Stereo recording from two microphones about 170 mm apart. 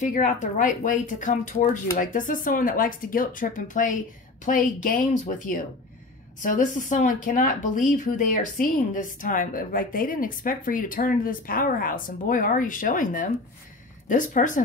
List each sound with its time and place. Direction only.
0.0 s speech: 45° left (ahead or behind)